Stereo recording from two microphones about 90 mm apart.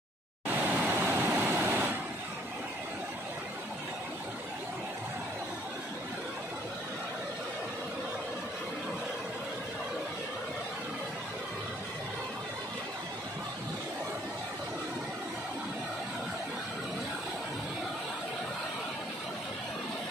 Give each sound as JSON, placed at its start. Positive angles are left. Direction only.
{"t": 0.6, "sound": "vehicle", "side_deg": -25}